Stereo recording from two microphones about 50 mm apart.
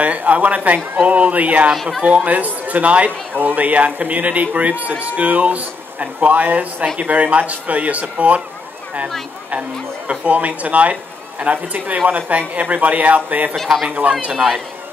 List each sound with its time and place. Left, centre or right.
0.0 s speech: right
9.5 s speech: right